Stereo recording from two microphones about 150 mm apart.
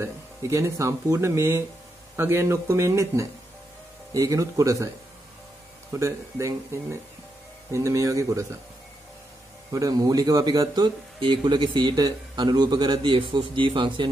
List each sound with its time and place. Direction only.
0.0 s speech: 20° right (ahead or behind)
5.9 s speech: 20° right (ahead or behind)
9.7 s speech: 25° right (ahead or behind)